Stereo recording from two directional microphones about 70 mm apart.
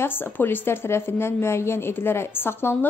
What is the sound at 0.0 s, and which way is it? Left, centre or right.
A woman's voice, left.